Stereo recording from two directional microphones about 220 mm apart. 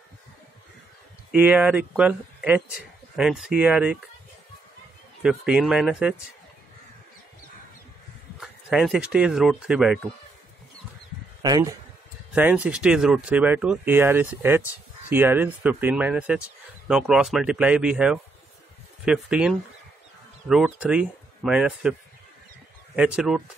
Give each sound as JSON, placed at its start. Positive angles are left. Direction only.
{"t": 1.3, "sound": "speech", "side_deg": -5}
{"t": 5.2, "sound": "speech", "side_deg": -5}
{"t": 8.4, "sound": "speech", "side_deg": 0}
{"t": 11.4, "sound": "speech", "side_deg": -15}
{"t": 12.4, "sound": "speech", "side_deg": -5}
{"t": 22.9, "sound": "speech", "side_deg": -5}